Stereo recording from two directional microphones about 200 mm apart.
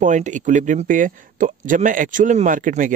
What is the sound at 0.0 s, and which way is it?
Speech, 40° right (ahead or behind).